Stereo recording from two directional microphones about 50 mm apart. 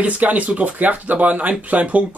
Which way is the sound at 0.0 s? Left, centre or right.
Right.